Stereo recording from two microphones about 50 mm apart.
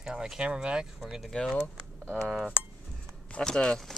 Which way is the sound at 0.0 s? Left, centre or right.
Centre.